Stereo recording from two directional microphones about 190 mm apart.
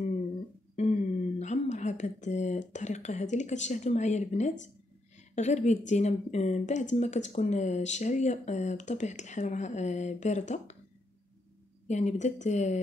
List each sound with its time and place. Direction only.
0.7 s speech: 35° left (ahead or behind)
11.9 s speech: 40° left (ahead or behind)